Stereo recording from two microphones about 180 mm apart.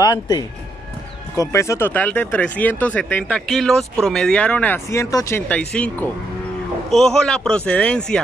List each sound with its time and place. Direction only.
0.0 s speech: 20° left (ahead or behind); by 8.2 s 5° left (ahead or behind)